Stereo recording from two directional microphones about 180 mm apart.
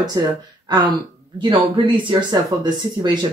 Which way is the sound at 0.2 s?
20° right (ahead or behind).